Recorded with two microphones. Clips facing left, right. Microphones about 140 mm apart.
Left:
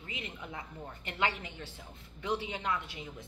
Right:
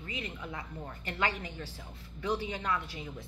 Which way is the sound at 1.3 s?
35° right (ahead or behind).